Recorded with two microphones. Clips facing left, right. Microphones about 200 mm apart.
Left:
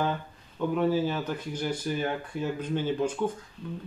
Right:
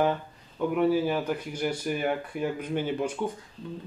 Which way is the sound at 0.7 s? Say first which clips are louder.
Right 2 dB; 10° right (ahead or behind).